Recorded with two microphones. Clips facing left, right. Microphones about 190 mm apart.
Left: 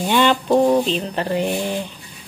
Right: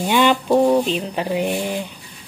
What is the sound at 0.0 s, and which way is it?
Speech, 10° right (ahead or behind).